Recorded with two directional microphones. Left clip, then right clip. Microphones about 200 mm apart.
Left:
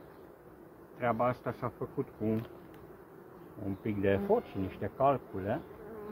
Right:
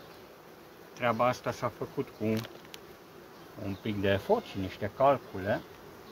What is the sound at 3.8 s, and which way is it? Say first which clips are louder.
Speech: right 1 dB; 15° right (ahead or behind).